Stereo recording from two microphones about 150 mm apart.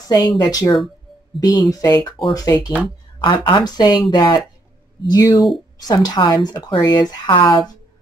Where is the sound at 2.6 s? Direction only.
10° right (ahead or behind).